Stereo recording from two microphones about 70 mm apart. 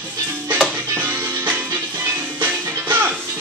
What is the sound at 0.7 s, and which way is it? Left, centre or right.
Music, right.